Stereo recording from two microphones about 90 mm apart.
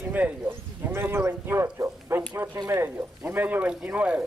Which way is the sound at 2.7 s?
25° right (ahead or behind).